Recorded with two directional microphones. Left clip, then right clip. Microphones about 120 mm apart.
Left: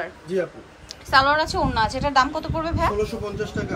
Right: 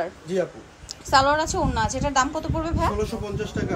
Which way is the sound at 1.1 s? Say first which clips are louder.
Left 1 dB; 35° right (ahead or behind).